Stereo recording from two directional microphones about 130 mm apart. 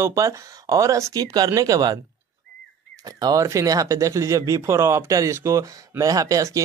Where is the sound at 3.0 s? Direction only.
30° right (ahead or behind).